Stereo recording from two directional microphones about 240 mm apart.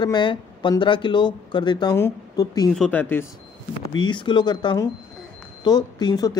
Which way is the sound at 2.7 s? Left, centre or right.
Centre.